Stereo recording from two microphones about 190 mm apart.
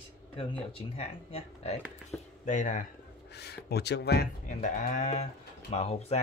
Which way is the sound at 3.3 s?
60° left (ahead or behind).